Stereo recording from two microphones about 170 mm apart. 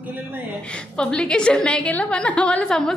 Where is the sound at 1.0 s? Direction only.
5° left (ahead or behind).